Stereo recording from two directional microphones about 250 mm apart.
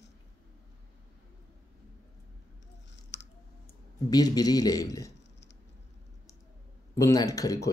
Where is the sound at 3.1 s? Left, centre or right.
Left.